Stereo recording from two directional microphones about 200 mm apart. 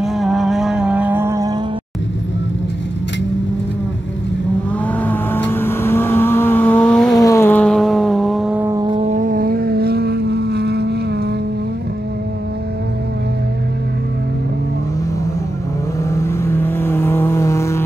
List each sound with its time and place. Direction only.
0.0 s vehicle: centre (ahead or behind); by 1.6 s 15° right (ahead or behind)
4.9 s vehicle: 10° left (ahead or behind); by 9.0 s 20° right (ahead or behind)
9.0 s vehicle: 40° right (ahead or behind)
16.0 s vehicle: 15° left (ahead or behind)